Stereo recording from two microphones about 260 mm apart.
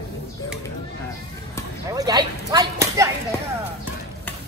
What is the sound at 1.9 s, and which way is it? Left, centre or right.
Speech, centre.